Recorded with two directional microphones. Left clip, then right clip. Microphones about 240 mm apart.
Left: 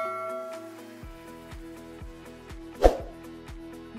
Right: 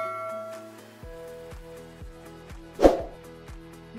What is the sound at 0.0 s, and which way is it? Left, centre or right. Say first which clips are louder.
Music: even; centre.